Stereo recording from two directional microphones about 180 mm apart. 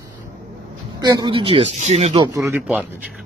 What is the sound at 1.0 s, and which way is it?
Speech, 25° right (ahead or behind).